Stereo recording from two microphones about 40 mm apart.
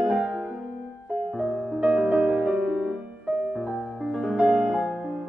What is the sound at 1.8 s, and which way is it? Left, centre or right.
Music, right.